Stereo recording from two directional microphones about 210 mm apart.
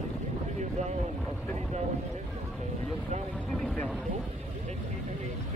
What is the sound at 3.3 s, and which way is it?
Speech, 5° left (ahead or behind).